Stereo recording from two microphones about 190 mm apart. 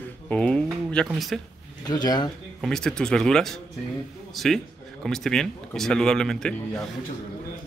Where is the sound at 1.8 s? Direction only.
20° left (ahead or behind).